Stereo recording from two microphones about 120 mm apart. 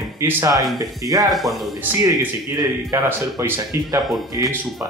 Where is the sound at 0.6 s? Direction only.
Centre (ahead or behind).